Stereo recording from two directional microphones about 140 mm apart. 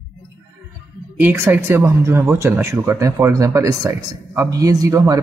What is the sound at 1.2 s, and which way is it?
A man's voice, 15° right (ahead or behind).